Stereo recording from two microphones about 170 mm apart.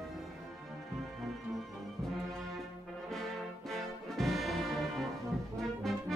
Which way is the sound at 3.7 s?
Centre (ahead or behind).